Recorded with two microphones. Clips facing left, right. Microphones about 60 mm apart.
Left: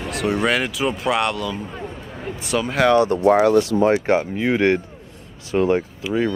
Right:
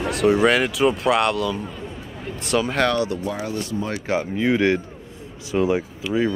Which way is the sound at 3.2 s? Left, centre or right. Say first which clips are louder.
Left 12 dB; left.